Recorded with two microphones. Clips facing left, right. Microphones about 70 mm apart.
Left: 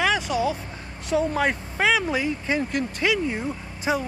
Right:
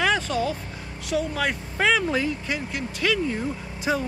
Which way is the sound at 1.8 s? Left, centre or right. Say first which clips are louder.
Even; centre.